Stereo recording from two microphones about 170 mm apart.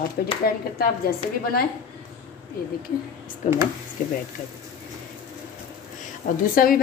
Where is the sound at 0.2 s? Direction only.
65° left (ahead or behind).